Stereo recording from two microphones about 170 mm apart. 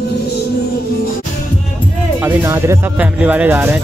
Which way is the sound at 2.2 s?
15° right (ahead or behind).